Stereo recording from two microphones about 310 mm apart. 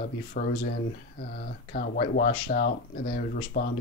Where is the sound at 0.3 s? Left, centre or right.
Left.